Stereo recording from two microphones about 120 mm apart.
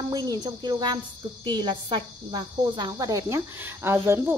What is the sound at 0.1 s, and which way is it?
Speech, 35° right (ahead or behind).